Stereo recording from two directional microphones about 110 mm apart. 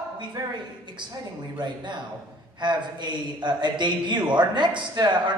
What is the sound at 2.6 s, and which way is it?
A man's voice, 45° right (ahead or behind).